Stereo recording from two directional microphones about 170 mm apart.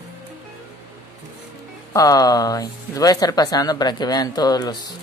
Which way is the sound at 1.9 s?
20° left (ahead or behind).